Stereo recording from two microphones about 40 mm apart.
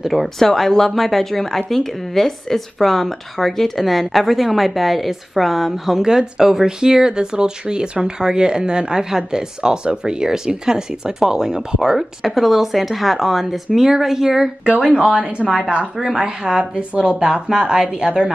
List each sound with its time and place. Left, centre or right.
0.1 s speech: centre
6.0 s speech: centre
15.7 s a woman's voice: right